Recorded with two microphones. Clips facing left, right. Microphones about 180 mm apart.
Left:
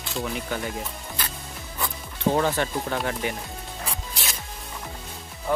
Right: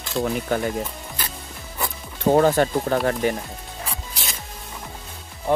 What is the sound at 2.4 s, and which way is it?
Speech, 45° right (ahead or behind).